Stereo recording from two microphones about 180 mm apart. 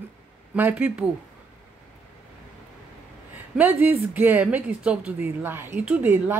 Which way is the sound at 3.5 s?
10° right (ahead or behind).